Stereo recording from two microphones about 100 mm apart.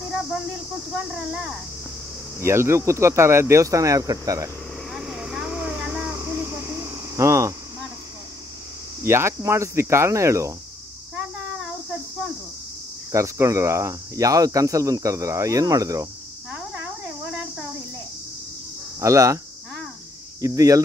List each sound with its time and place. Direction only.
0.1 s speech: 5° right (ahead or behind)
2.4 s speech: 25° right (ahead or behind)
4.9 s vehicle: 5° right (ahead or behind)
6.0 s a sound: 20° right (ahead or behind)
9.0 s speech: 25° right (ahead or behind)
13.1 s speech: 30° right (ahead or behind)
16.5 s insect: 10° right (ahead or behind)
18.9 s speech: 30° right (ahead or behind)